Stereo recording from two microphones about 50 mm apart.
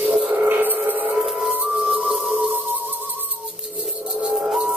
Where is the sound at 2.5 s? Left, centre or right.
Right.